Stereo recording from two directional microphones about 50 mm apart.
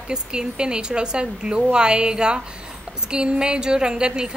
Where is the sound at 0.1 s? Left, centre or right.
Centre.